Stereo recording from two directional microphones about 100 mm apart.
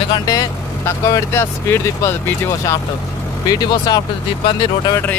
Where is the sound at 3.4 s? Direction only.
40° left (ahead or behind).